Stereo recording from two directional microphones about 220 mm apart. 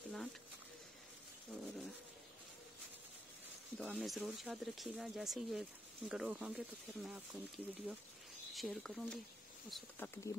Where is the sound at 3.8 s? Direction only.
Centre (ahead or behind).